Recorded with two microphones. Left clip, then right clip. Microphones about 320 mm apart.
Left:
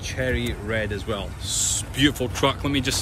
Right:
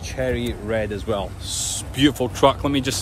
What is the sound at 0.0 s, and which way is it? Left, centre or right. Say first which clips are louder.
Speech: right 2 dB; centre.